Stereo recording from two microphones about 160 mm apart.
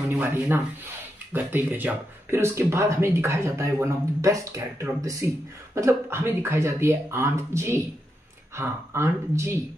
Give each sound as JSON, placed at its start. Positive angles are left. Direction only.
{"t": 0.2, "sound": "speech", "side_deg": -10}